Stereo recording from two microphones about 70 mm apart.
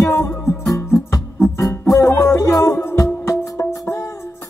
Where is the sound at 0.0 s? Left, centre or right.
Left.